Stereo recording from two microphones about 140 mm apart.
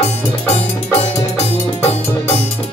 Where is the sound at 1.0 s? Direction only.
50° left (ahead or behind).